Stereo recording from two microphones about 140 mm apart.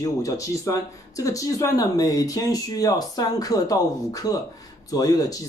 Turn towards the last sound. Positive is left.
turn(degrees=25)  # may be behind; listen again after turning